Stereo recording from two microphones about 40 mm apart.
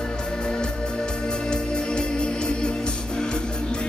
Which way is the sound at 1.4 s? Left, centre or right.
Left.